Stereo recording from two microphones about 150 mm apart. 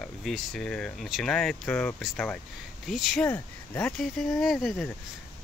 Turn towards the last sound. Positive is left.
turn(degrees=0)  # may be behind; listen again after turning